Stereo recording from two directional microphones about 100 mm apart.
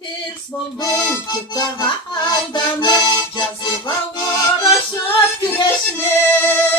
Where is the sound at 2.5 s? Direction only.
45° left (ahead or behind).